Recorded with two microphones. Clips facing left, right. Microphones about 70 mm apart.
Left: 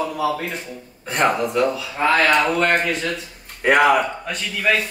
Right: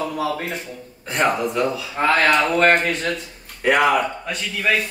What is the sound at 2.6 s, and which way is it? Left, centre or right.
Speech, right.